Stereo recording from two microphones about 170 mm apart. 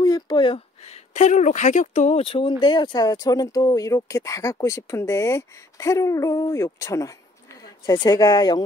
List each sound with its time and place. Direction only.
0.0 s speech: 25° left (ahead or behind)